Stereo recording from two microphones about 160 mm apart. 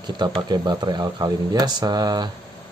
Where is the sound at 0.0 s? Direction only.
25° right (ahead or behind).